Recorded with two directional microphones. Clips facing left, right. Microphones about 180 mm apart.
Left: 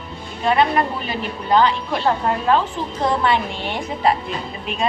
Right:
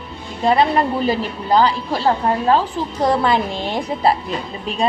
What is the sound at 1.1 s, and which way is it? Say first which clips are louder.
A woman's voice: right 2 dB; 35° right (ahead or behind).